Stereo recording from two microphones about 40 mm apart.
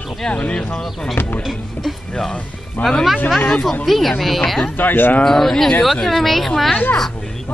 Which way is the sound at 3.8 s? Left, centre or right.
Centre.